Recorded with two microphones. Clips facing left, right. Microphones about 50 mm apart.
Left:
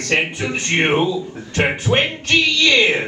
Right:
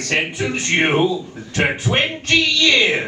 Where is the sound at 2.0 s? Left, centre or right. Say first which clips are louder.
Right 1 dB; left.